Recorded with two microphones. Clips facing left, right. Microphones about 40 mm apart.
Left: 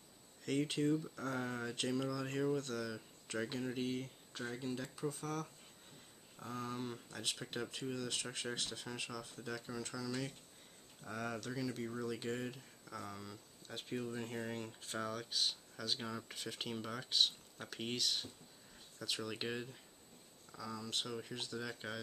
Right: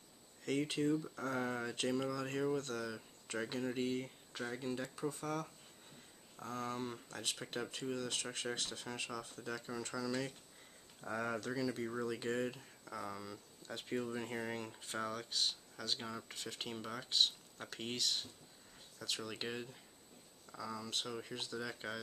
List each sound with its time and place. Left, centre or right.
0.5 s speech: centre
6.6 s speech: centre
11.0 s speech: centre
13.8 s speech: centre